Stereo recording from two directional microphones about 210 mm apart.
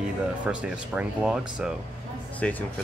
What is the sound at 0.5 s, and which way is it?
Speech, 5° right (ahead or behind).